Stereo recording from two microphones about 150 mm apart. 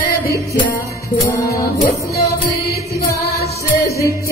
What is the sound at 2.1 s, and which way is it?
Music, 90° left.